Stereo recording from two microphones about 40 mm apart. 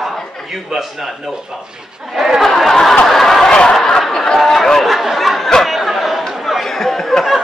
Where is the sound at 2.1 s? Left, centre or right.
Centre.